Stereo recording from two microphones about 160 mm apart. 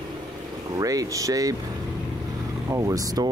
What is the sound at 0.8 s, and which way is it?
Speech, 20° right (ahead or behind).